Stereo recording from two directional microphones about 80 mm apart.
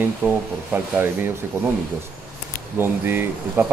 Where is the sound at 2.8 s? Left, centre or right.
Right.